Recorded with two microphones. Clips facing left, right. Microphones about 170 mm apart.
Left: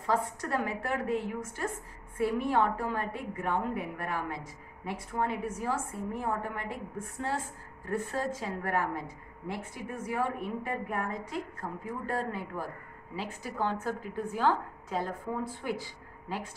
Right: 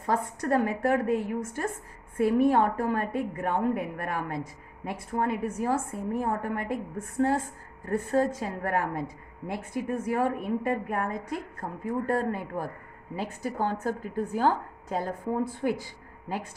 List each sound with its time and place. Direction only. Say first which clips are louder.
0.0 s speech: right 2 dB; 50° right (ahead or behind)
2.1 s speech: right 6 dB; 55° right (ahead or behind)